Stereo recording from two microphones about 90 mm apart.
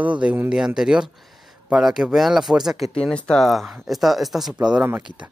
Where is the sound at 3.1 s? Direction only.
10° left (ahead or behind); by 4.8 s 5° right (ahead or behind).